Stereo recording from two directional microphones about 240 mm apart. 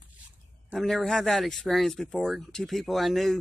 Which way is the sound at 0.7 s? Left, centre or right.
Centre.